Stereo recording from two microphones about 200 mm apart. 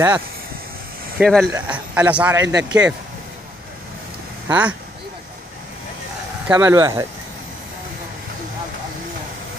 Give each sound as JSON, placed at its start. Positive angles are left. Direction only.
{"t": 1.1, "sound": "speech", "side_deg": 0}
{"t": 4.5, "sound": "speech", "side_deg": -5}
{"t": 6.4, "sound": "speech", "side_deg": -5}